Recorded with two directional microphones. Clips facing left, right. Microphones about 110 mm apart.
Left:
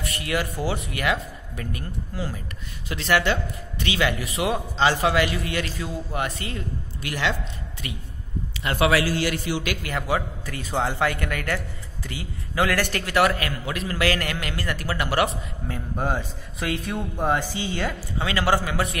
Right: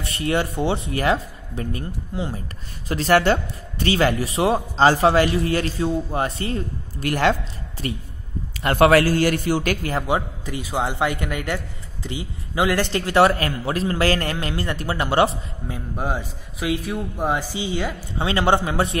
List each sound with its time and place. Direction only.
0.0 s a man's voice: 30° right (ahead or behind)
2.9 s a man's voice: 40° right (ahead or behind)
8.6 s a man's voice: 50° right (ahead or behind)
10.0 s a man's voice: 20° right (ahead or behind)
15.7 s a man's voice: 10° right (ahead or behind)
18.1 s a man's voice: 30° right (ahead or behind)